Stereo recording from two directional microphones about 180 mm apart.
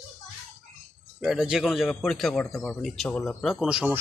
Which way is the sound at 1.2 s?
5° right (ahead or behind).